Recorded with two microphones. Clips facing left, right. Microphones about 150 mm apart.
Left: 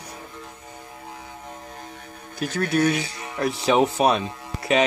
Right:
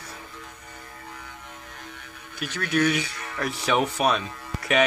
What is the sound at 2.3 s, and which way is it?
Speech, 40° left (ahead or behind).